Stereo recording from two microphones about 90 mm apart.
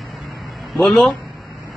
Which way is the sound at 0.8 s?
5° left (ahead or behind).